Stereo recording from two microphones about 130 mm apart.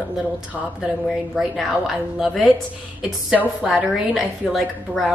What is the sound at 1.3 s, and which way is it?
A woman's voice, centre (ahead or behind).